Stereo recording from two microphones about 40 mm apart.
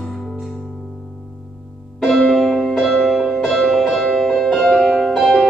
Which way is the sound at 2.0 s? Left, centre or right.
Centre.